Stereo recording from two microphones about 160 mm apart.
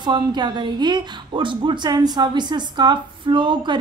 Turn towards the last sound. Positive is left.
turn(degrees=-30)  # may be behind; listen again after turning